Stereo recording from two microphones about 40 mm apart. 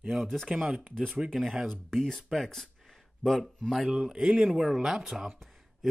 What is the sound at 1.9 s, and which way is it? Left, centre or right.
Speech, centre.